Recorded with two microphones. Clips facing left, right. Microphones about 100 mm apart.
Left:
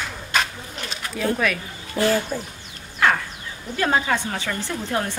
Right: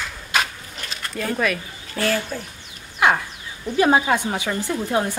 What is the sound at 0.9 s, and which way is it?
Pigeon, 5° left (ahead or behind).